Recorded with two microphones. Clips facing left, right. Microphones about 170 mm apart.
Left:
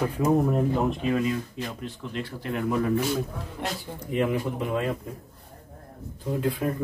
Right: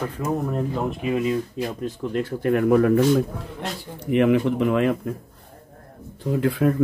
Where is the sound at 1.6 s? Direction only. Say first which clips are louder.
Right 7 dB; 45° right (ahead or behind).